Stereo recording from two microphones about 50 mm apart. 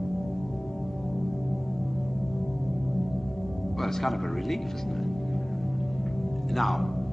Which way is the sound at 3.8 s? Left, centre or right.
Centre.